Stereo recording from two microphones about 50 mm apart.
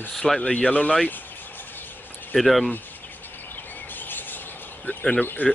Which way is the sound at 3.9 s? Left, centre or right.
Left.